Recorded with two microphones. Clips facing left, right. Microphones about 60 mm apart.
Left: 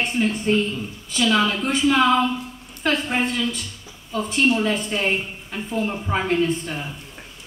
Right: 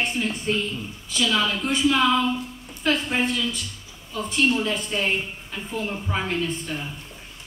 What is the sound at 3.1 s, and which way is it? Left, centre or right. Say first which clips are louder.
A woman's voice: left 2 dB; left.